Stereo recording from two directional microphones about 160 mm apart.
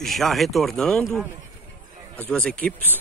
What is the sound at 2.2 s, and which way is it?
Speech, 5° left (ahead or behind).